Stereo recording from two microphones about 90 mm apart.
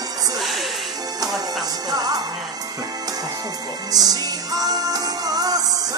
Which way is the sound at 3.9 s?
45° right (ahead or behind).